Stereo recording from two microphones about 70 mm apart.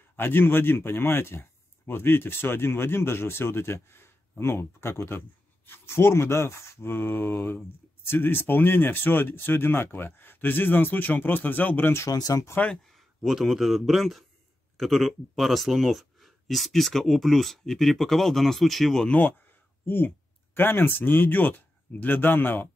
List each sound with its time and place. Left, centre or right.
0.1 s speech: left
12.1 s speech: left
12.8 s speech: centre
19.0 s speech: left